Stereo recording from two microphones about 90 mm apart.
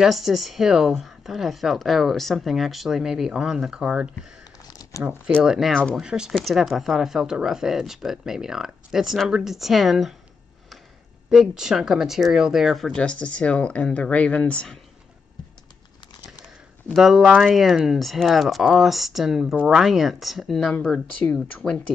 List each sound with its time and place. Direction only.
0.0 s speech: centre (ahead or behind)
4.6 s crumpling: 45° left (ahead or behind)
5.4 s speech: 5° right (ahead or behind)
11.2 s speech: 5° right (ahead or behind)
12.9 s speech: 10° left (ahead or behind)
16.9 s speech: 5° right (ahead or behind)